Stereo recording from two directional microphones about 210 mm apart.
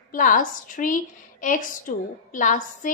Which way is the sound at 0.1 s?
40° left (ahead or behind).